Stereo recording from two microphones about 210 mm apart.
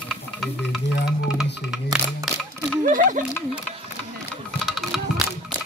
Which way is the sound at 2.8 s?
40° right (ahead or behind).